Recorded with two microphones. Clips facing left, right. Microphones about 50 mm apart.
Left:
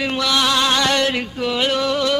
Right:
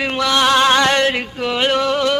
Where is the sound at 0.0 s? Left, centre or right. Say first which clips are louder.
Right 3 dB; right.